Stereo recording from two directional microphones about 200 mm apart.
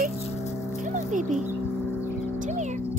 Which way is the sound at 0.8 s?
40° right (ahead or behind).